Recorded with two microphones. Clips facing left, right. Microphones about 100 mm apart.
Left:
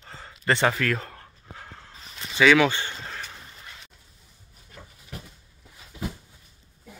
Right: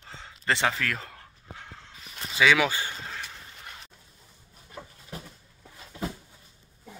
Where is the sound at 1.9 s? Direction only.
35° left (ahead or behind).